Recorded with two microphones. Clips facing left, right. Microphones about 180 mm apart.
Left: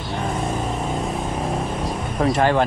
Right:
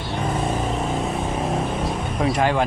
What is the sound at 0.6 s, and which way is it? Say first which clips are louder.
Vehicle: right 1 dB; centre (ahead or behind).